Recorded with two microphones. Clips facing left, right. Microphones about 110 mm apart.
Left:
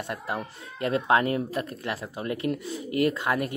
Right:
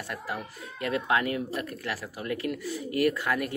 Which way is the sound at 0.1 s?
30° left (ahead or behind).